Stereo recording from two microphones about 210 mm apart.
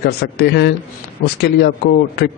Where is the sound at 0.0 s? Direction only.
50° left (ahead or behind).